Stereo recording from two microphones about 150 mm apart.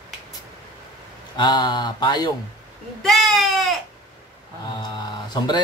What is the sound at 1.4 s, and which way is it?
Speech, 30° left (ahead or behind).